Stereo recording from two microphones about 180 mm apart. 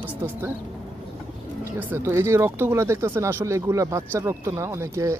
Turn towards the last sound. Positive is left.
turn(degrees=-15)  # may be behind; listen again after turning